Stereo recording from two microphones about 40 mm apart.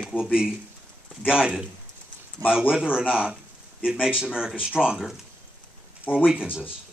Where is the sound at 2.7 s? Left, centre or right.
Centre.